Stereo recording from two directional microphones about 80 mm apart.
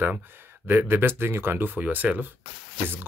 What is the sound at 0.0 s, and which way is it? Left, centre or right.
Speech, right.